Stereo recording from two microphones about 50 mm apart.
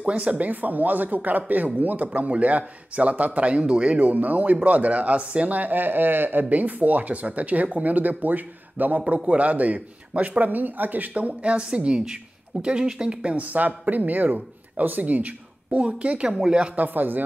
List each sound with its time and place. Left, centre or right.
0.0 s a man's voice: right
16.7 s a man's voice: right